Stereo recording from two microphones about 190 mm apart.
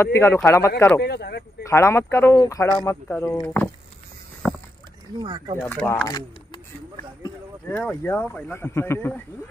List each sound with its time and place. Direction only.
0.0 s speech: 15° left (ahead or behind)
1.0 s speech: 60° left (ahead or behind)
1.6 s speech: 15° left (ahead or behind)
4.4 s a sound: centre (ahead or behind)
5.7 s speech: 10° left (ahead or behind)
6.0 s speech: 20° left (ahead or behind)
7.6 s speech: 5° left (ahead or behind)